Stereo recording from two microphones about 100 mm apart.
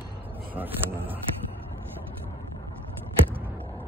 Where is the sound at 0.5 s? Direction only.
20° right (ahead or behind).